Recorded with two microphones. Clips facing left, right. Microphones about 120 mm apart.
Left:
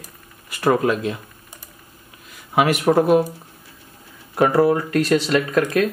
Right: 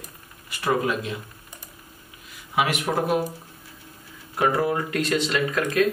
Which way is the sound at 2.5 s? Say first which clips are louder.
Left 7 dB; 50° left (ahead or behind).